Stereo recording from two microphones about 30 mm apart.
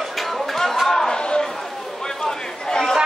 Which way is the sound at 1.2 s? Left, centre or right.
Left.